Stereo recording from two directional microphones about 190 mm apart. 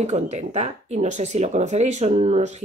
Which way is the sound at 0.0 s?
35° right (ahead or behind).